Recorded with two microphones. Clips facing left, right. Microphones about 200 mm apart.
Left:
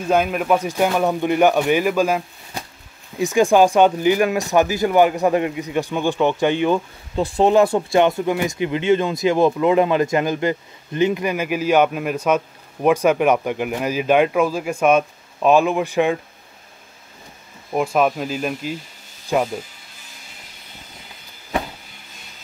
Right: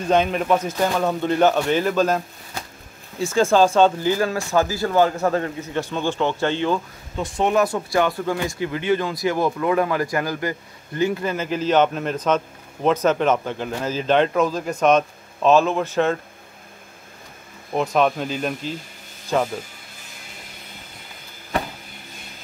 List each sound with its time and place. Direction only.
0.0 s speech: 5° left (ahead or behind)
7.2 s speech: 35° left (ahead or behind); by 16.2 s 15° left (ahead or behind)
17.7 s speech: 5° left (ahead or behind)